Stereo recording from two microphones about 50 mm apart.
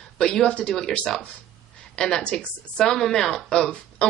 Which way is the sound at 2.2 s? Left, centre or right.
Left.